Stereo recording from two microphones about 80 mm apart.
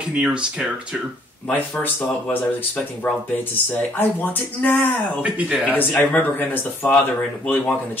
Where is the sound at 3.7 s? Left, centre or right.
Left.